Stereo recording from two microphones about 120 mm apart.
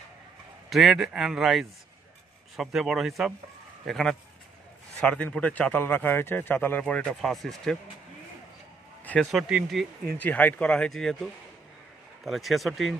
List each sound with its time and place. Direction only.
0.7 s a man's voice: centre (ahead or behind)
9.4 s speech: 10° right (ahead or behind)
10.0 s a man's voice: 15° left (ahead or behind)
12.3 s speech: centre (ahead or behind)